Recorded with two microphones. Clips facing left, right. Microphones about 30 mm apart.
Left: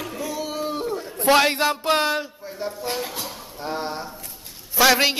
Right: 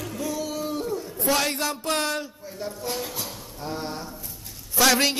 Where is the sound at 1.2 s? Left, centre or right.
Left.